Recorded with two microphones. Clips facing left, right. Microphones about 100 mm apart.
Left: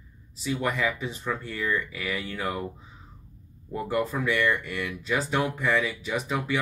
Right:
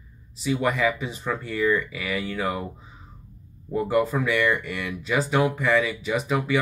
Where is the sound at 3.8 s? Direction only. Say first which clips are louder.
Right 4 dB; 5° right (ahead or behind).